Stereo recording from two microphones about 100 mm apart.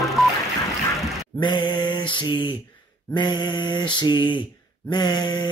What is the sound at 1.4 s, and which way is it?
Mantra, 50° left (ahead or behind).